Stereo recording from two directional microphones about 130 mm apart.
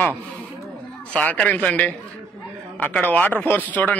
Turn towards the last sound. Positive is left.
turn(degrees=10)  # may be behind; listen again after turning